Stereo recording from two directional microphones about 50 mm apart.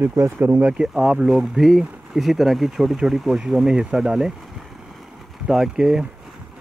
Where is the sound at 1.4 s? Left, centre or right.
Centre.